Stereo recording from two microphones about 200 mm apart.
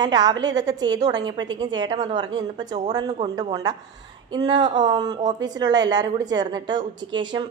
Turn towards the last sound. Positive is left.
turn(degrees=-20)  # may be behind; listen again after turning